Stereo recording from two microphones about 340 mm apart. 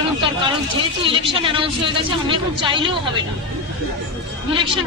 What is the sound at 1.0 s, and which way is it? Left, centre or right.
A woman's voice, centre.